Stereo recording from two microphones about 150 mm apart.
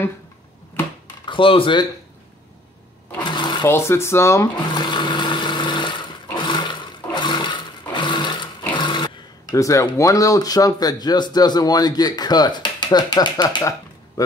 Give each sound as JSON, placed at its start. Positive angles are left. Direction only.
{"t": 1.2, "sound": "speech", "side_deg": 35}
{"t": 3.3, "sound": "sewing machine", "side_deg": 30}
{"t": 3.6, "sound": "speech", "side_deg": 15}
{"t": 4.7, "sound": "vehicle", "side_deg": 30}
{"t": 6.3, "sound": "a sound", "side_deg": 30}
{"t": 7.2, "sound": "sewing machine", "side_deg": 30}